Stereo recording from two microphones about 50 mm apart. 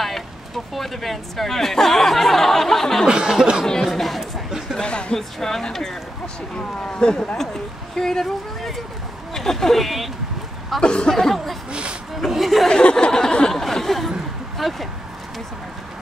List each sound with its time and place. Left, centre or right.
0.7 s speech: centre
3.1 s chuckle: centre
3.8 s speech: centre
4.2 s a sound: centre
4.7 s speech: left
5.4 s speech: centre
7.3 s speech: centre
10.8 s speech: centre
12.6 s a sound: centre
14.6 s speech: centre